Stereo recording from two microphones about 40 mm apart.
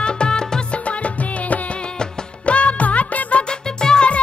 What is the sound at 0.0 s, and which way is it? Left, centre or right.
Music, left.